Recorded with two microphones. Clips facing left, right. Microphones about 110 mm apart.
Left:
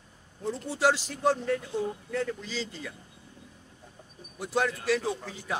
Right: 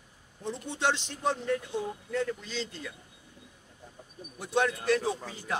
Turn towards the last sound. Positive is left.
turn(degrees=0)  # may be behind; listen again after turning